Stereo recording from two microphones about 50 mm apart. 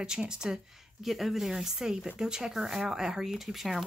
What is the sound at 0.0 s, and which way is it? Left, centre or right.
Speech, centre.